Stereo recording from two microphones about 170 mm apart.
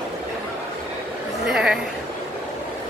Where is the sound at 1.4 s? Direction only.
5° right (ahead or behind).